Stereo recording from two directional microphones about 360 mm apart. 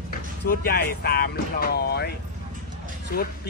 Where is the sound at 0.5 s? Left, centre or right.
Left.